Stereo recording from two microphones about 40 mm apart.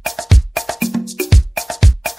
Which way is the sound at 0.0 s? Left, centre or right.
Centre.